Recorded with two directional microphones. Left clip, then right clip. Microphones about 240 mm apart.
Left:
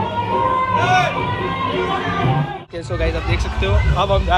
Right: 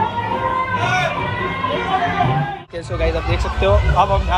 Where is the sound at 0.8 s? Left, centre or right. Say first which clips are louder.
Left 3 dB; centre.